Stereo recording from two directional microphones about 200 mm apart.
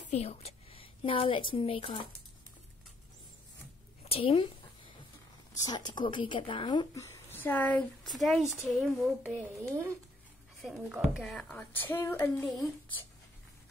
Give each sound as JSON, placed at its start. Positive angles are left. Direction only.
{"t": 0.1, "sound": "a woman's voice", "side_deg": 30}
{"t": 4.0, "sound": "speech", "side_deg": 30}
{"t": 5.7, "sound": "a woman's voice", "side_deg": 20}
{"t": 7.3, "sound": "a woman's voice", "side_deg": 10}